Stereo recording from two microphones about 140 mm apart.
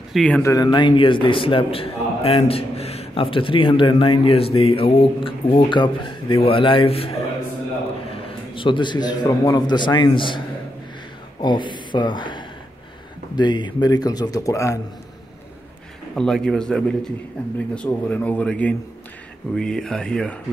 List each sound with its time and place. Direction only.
0.1 s speech: 5° left (ahead or behind)
0.4 s a man's voice: 25° left (ahead or behind)
11.4 s a man's voice: 35° left (ahead or behind)
16.2 s a man's voice: 5° left (ahead or behind)